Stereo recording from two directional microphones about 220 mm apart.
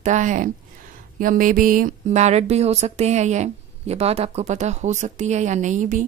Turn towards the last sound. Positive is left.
turn(degrees=-35)  # may be behind; listen again after turning